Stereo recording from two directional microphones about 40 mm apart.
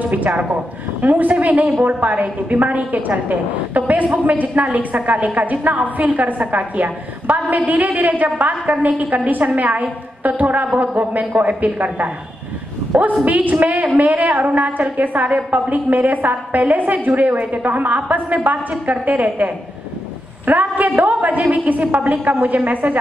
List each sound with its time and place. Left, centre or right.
0.1 s a woman's voice: right
13.2 s a woman's voice: right